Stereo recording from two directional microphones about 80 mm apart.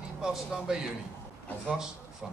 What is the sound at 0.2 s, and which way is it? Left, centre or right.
Speech, centre.